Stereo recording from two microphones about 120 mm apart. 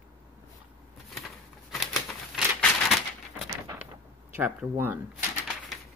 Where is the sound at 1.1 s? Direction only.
Centre (ahead or behind).